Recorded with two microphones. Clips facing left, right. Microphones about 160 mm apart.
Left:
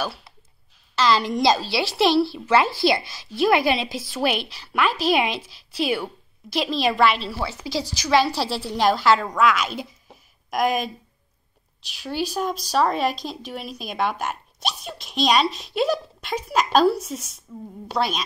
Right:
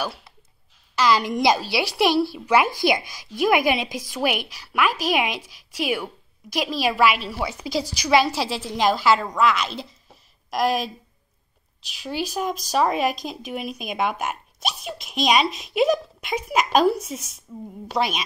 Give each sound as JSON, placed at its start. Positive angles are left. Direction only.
{"t": 0.9, "sound": "a woman's voice", "side_deg": -15}
{"t": 8.4, "sound": "a woman's voice", "side_deg": 0}
{"t": 11.9, "sound": "a woman's voice", "side_deg": -5}